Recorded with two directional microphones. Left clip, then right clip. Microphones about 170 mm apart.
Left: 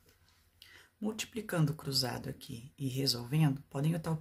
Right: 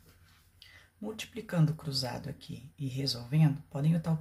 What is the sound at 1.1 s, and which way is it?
Speech, 40° left (ahead or behind).